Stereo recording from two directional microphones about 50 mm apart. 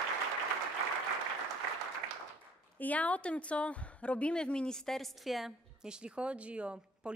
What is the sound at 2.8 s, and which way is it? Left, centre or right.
A woman's voice, left.